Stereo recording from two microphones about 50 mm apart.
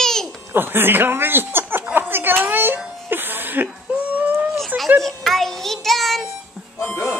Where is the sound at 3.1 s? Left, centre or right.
Right.